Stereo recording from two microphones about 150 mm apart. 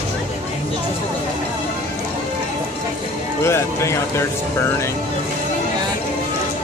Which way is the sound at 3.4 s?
20° left (ahead or behind).